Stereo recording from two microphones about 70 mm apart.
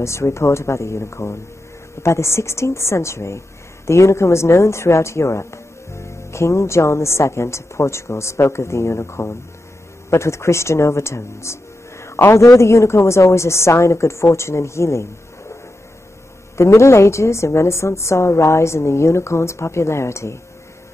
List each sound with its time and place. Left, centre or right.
0.0 s a woman's voice: left
16.5 s a woman's voice: left